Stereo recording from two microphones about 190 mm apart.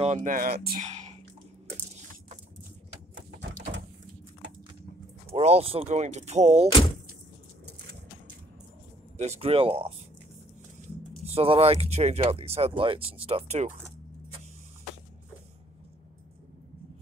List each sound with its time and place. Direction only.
0.0 s speech: 40° right (ahead or behind)
0.8 s whispering: 35° right (ahead or behind)
3.3 s a sound: 65° right (ahead or behind)
5.3 s speech: 35° right (ahead or behind)
9.1 s speech: 35° right (ahead or behind)
11.2 s speech: 30° right (ahead or behind)